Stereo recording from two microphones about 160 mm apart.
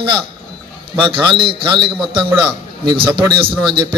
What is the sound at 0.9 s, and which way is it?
A man's voice, 30° right (ahead or behind).